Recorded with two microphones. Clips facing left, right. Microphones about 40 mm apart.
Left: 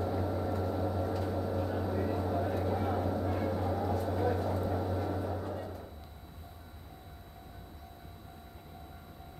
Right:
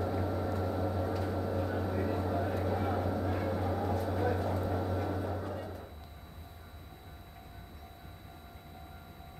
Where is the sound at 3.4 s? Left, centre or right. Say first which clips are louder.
Left 1 dB; right.